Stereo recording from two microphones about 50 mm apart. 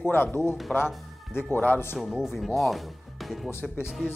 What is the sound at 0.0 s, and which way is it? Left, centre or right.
Speech, left.